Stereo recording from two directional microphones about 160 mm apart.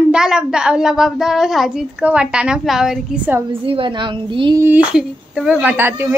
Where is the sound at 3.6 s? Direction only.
35° right (ahead or behind).